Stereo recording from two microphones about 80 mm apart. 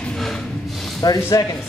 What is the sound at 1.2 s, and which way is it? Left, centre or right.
Speech, left.